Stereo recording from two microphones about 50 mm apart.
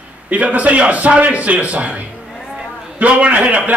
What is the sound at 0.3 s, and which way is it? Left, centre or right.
A man's voice, right.